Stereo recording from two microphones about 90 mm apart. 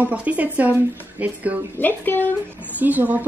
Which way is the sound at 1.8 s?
20° left (ahead or behind).